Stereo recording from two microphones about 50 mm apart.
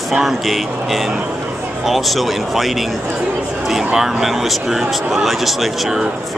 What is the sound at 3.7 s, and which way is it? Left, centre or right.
Speech, centre.